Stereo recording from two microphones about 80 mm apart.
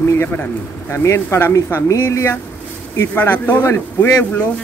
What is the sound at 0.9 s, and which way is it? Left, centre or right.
Speech, left.